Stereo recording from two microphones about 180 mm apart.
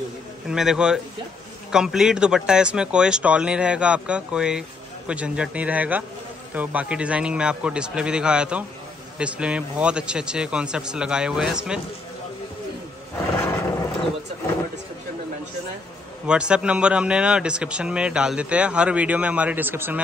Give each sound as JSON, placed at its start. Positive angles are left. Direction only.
{"t": 0.5, "sound": "speech", "side_deg": -5}
{"t": 16.3, "sound": "speech", "side_deg": -5}